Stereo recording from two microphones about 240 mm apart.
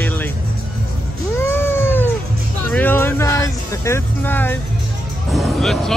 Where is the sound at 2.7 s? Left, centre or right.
Centre.